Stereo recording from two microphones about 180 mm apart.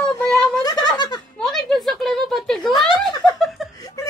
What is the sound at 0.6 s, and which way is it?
Giggle, 20° left (ahead or behind).